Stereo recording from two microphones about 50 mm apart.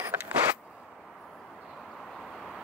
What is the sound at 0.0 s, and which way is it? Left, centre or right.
Vehicle, right.